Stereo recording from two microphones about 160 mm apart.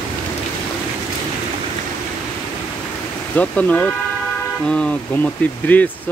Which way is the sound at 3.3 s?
10° left (ahead or behind).